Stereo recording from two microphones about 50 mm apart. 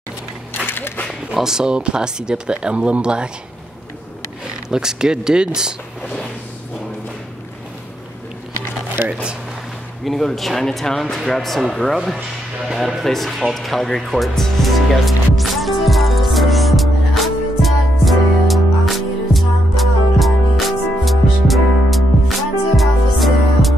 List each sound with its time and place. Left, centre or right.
0.7 s a sound: left
1.3 s speech: centre
4.6 s speech: centre
10.0 s speech: centre
13.5 s music: centre